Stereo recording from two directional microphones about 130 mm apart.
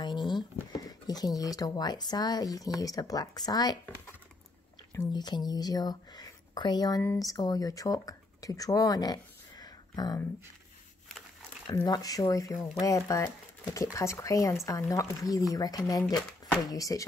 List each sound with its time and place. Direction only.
0.0 s speech: 35° left (ahead or behind)
5.1 s speech: 35° left (ahead or behind)
11.7 s speech: 30° left (ahead or behind)